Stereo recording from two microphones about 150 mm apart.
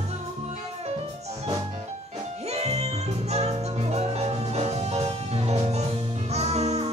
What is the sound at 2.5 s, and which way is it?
Music, 45° right (ahead or behind).